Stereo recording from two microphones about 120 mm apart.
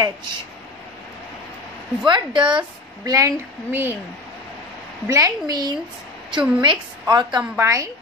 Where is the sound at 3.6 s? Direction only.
15° right (ahead or behind).